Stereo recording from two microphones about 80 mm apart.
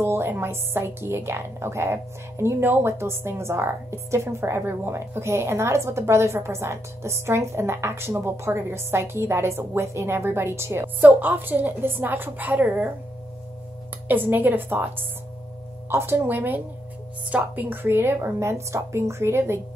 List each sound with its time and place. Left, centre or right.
0.0 s a woman's voice: right
14.0 s a woman's voice: right